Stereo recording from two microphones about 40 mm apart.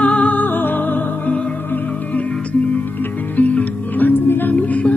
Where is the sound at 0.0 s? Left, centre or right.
Left.